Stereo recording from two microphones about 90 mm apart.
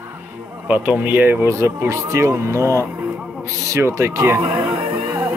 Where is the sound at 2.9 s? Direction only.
15° right (ahead or behind).